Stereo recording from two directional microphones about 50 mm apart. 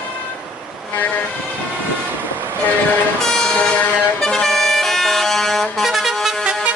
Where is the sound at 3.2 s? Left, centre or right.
Centre.